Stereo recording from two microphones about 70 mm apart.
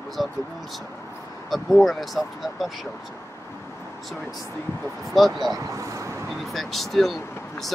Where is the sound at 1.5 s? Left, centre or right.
Centre.